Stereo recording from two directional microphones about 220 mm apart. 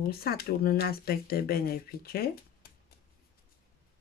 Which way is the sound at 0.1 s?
45° left (ahead or behind).